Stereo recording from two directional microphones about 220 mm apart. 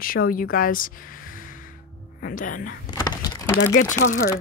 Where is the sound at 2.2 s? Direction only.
35° left (ahead or behind).